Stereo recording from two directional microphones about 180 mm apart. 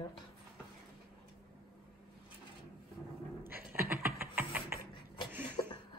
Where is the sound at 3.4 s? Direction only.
10° right (ahead or behind).